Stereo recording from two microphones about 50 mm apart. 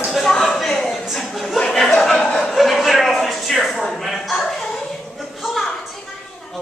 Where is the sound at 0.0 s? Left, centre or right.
Centre.